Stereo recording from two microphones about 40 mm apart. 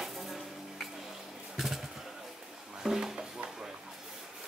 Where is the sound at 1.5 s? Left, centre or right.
Centre.